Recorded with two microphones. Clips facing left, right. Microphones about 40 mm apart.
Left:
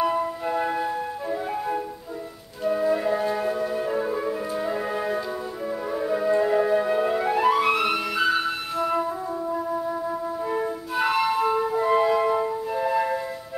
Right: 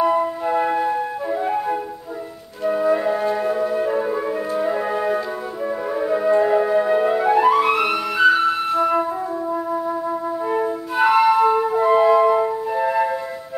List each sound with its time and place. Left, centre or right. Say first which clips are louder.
0.0 s flute: right 5 dB; centre
2.6 s music: right 4 dB; centre
5.9 s flute: right 5 dB; centre